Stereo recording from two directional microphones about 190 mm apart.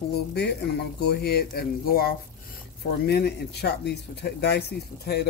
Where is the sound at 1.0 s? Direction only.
55° left (ahead or behind).